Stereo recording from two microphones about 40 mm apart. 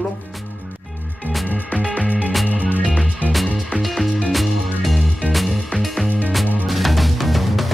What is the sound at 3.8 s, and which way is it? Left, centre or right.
Music, centre.